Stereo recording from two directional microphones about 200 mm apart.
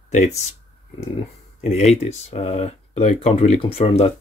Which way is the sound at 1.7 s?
35° left (ahead or behind).